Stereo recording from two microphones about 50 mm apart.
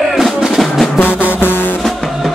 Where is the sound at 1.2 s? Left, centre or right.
Left.